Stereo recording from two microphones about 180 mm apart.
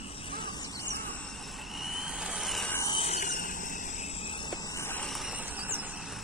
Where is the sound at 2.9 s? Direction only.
35° left (ahead or behind).